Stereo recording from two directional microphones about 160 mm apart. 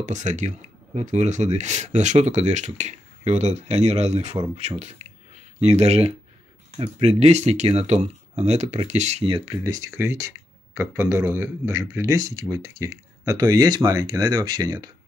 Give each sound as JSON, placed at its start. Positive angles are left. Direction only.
{"t": 0.0, "sound": "speech", "side_deg": -50}
{"t": 9.6, "sound": "speech", "side_deg": -20}